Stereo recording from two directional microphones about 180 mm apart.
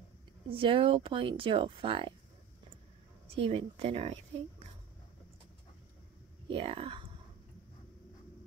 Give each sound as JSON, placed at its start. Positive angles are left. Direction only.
{"t": 0.5, "sound": "speech", "side_deg": -30}
{"t": 3.3, "sound": "a woman's voice", "side_deg": -30}
{"t": 6.4, "sound": "speech", "side_deg": -30}